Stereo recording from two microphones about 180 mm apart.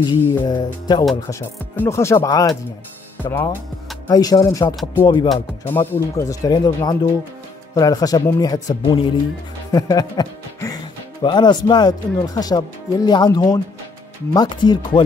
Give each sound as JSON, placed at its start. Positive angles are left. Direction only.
{"t": 0.0, "sound": "speech", "side_deg": 20}
{"t": 5.7, "sound": "speech", "side_deg": 10}